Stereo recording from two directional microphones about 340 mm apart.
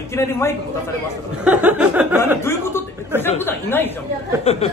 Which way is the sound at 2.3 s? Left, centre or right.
Centre.